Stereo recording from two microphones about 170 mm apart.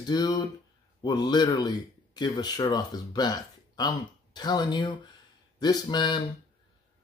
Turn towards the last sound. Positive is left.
turn(degrees=25)  # may be behind; listen again after turning